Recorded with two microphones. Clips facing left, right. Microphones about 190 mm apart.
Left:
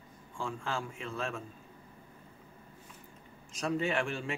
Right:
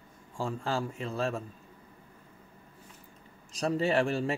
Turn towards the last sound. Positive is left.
turn(degrees=-35)  # may be behind; listen again after turning